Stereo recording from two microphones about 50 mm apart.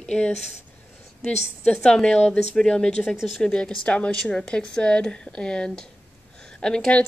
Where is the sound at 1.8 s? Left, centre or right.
Centre.